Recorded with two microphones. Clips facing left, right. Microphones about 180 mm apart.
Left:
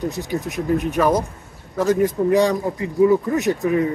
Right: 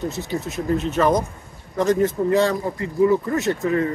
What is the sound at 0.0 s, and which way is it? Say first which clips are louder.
Speech: left 2 dB; 15° left (ahead or behind).